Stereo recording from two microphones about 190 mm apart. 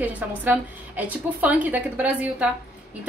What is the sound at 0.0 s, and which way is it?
A woman's voice, 10° right (ahead or behind).